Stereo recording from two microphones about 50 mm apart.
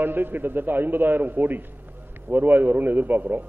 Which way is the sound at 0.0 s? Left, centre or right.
Right.